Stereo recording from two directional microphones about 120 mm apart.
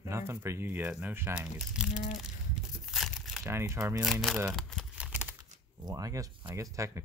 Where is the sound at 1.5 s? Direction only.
5° right (ahead or behind).